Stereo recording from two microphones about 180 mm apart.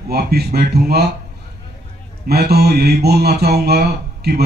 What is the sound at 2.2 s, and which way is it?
Speech, 60° right (ahead or behind).